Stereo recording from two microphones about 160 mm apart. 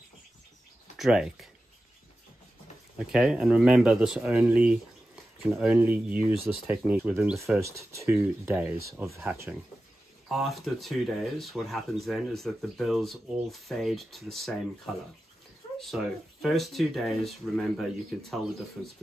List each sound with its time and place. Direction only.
0.9 s speech: centre (ahead or behind)
3.0 s speech: 5° right (ahead or behind)
10.2 s speech: centre (ahead or behind)
15.8 s speech: centre (ahead or behind)